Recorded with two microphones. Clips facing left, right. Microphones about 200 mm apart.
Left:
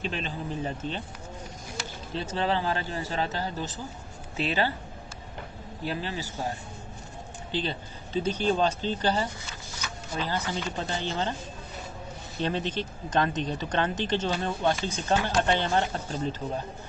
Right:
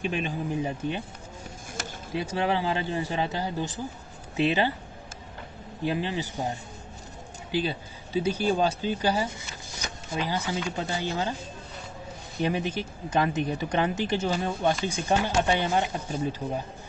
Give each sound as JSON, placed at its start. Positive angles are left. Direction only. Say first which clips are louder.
{"t": 0.0, "sound": "speech", "louder": "right 4 dB", "side_deg": -15}
{"t": 2.1, "sound": "speech", "louder": "right 1 dB", "side_deg": -10}
{"t": 5.9, "sound": "a man's voice", "louder": "right 4 dB", "side_deg": -20}
{"t": 7.5, "sound": "speech", "louder": "right 3 dB", "side_deg": -10}
{"t": 12.4, "sound": "speech", "louder": "right 2 dB", "side_deg": -10}